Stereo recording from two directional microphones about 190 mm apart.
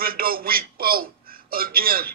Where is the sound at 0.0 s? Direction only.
50° right (ahead or behind).